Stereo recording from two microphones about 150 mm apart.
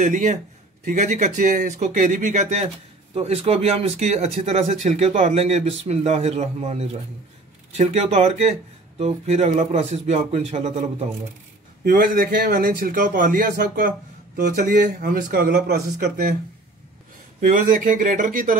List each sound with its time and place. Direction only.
0.0 s speech: 55° right (ahead or behind)
11.8 s a man's voice: 75° right (ahead or behind)
17.4 s speech: 60° right (ahead or behind)